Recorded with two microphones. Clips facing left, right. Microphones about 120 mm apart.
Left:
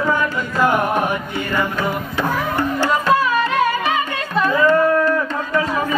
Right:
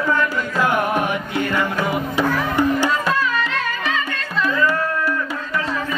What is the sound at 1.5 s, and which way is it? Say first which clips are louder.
Music: left 2 dB; 10° right (ahead or behind).